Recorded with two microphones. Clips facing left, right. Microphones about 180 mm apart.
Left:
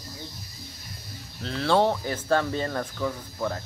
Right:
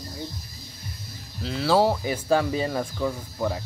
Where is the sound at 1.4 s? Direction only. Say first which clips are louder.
Right 1 dB; 5° right (ahead or behind).